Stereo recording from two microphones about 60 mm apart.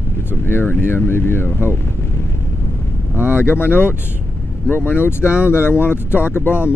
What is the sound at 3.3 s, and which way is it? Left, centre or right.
Speech, left.